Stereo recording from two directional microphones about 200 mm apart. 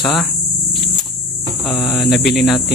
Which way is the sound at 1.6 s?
Centre (ahead or behind).